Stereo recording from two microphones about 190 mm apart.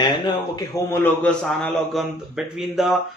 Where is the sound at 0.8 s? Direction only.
10° left (ahead or behind).